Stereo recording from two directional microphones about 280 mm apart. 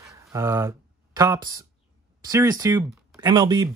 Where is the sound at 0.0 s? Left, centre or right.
Centre.